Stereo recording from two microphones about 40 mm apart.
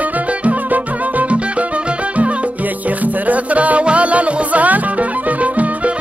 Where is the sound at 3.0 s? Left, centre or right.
Right.